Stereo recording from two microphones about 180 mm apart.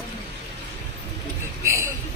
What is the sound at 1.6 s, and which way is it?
Speech, 15° right (ahead or behind).